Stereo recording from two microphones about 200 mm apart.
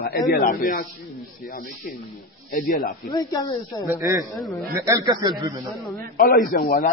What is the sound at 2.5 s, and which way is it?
Speech, 40° left (ahead or behind).